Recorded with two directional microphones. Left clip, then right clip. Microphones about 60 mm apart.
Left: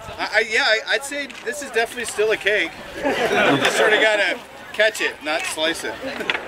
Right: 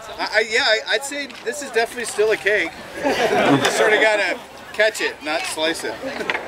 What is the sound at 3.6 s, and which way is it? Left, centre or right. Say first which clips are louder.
Speech: even; centre.